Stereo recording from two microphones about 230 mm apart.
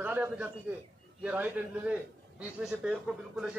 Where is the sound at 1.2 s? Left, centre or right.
Centre.